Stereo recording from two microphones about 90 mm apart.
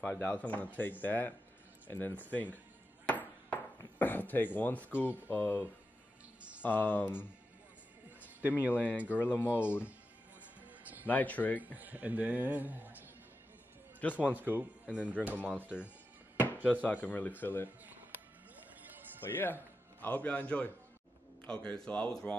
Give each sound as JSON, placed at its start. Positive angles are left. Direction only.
{"t": 0.0, "sound": "speech", "side_deg": 15}
{"t": 3.1, "sound": "music", "side_deg": 20}
{"t": 4.0, "sound": "speech", "side_deg": 20}
{"t": 8.4, "sound": "speech", "side_deg": -20}
{"t": 8.7, "sound": "speech", "side_deg": 20}
{"t": 11.1, "sound": "speech", "side_deg": 20}
{"t": 11.6, "sound": "a man's voice", "side_deg": -20}
{"t": 14.1, "sound": "a man's voice", "side_deg": -15}
{"t": 16.8, "sound": "speech", "side_deg": 20}
{"t": 18.8, "sound": "music", "side_deg": -20}
{"t": 20.0, "sound": "speech", "side_deg": 15}